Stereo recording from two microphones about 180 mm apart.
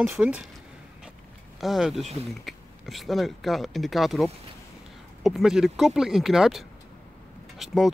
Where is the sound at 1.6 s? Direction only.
Centre (ahead or behind).